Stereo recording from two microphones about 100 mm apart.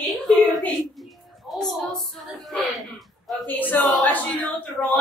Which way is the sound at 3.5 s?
15° left (ahead or behind).